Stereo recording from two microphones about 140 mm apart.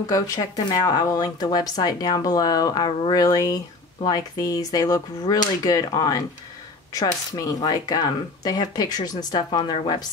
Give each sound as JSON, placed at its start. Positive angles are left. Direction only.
{"t": 0.1, "sound": "speech", "side_deg": 25}